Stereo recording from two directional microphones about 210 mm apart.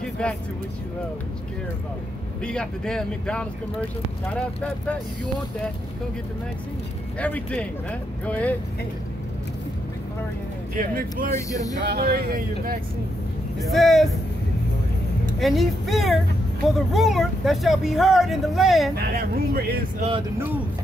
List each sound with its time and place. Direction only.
0.0 s a sound: 5° left (ahead or behind)
2.4 s speech: 5° left (ahead or behind)
7.2 s speech: 5° left (ahead or behind)
10.8 s speech: 40° right (ahead or behind)
11.3 s speech: 15° left (ahead or behind)
11.8 s speech: 50° right (ahead or behind)
13.6 s speech: centre (ahead or behind)
15.3 s speech: centre (ahead or behind)
18.9 s speech: 45° right (ahead or behind)